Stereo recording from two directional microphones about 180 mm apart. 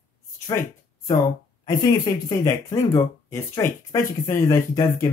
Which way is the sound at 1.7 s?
20° left (ahead or behind).